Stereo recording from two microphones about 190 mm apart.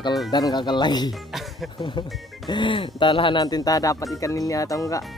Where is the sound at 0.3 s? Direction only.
20° left (ahead or behind).